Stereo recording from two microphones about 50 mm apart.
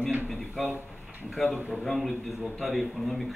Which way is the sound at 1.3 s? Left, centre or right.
Centre.